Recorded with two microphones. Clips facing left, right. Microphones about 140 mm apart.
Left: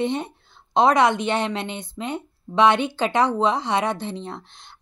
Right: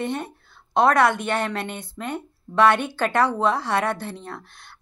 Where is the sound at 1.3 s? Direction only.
20° left (ahead or behind).